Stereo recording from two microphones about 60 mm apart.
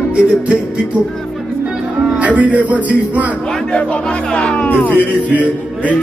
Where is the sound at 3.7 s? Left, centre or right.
Centre.